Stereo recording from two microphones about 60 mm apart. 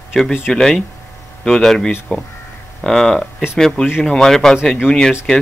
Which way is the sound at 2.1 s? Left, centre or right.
Left.